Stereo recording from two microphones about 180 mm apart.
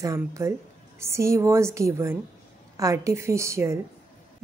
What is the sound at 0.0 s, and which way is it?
A woman's voice, 15° right (ahead or behind).